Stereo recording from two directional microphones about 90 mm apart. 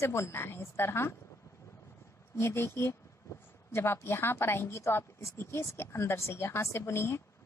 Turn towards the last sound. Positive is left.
turn(degrees=30)  # may be behind; listen again after turning